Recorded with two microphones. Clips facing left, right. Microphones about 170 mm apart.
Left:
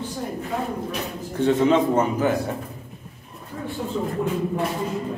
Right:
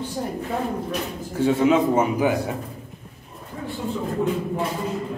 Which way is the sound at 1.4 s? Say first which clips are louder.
Even; 10° right (ahead or behind).